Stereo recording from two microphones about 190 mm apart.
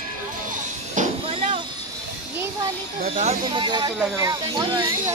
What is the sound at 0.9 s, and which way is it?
Music, 40° right (ahead or behind).